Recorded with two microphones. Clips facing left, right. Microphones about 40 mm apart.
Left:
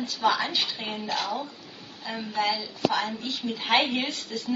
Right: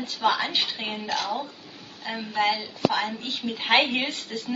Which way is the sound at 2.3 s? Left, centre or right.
Right.